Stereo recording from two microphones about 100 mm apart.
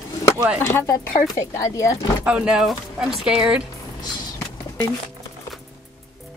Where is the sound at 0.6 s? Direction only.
25° left (ahead or behind).